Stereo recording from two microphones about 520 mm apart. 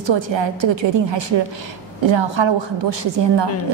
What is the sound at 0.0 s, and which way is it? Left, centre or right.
A woman's voice, right.